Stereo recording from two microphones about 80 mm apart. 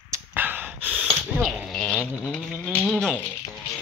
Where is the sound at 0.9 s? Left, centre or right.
Centre.